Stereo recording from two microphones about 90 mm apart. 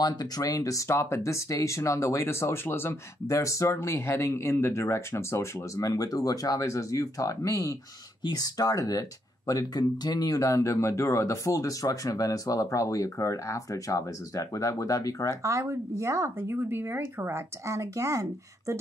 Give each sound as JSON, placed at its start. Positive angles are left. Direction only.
{"t": 0.0, "sound": "speech", "side_deg": 50}
{"t": 3.3, "sound": "speech", "side_deg": 35}
{"t": 15.4, "sound": "speech", "side_deg": -40}